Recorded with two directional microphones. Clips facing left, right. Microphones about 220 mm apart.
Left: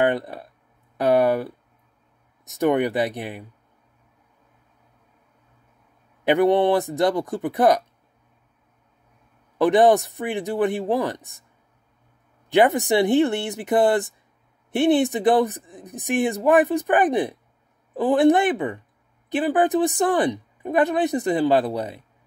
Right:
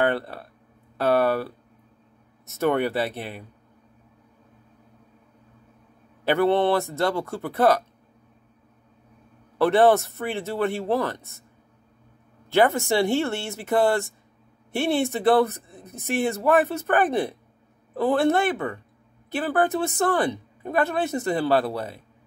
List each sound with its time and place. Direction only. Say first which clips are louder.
0.0 s speech: left 2 dB; 15° left (ahead or behind)
6.2 s speech: left 3 dB; 15° left (ahead or behind)
9.6 s speech: left 2 dB; 15° left (ahead or behind)
12.4 s speech: left 2 dB; 15° left (ahead or behind)